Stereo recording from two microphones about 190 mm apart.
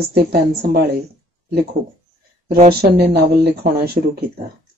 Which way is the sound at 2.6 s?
55° right (ahead or behind).